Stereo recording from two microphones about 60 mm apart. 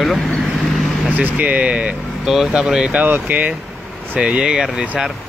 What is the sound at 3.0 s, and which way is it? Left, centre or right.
Speech, right.